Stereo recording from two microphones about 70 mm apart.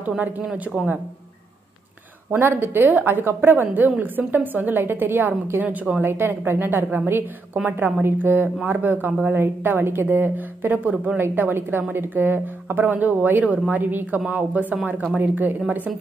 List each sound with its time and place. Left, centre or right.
2.3 s speech: right
6.0 s a woman's voice: right